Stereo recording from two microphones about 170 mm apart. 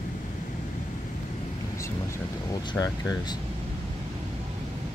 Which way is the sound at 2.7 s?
25° left (ahead or behind).